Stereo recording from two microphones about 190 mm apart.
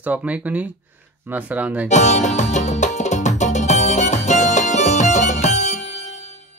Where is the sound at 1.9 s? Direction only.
40° left (ahead or behind).